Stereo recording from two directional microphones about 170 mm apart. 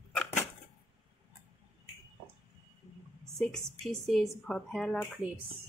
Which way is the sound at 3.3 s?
Centre (ahead or behind).